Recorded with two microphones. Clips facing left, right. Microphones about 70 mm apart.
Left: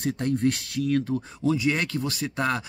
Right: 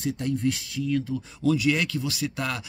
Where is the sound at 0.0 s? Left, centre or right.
Left.